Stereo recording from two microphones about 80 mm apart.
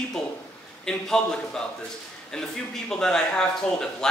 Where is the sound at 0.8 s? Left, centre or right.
Centre.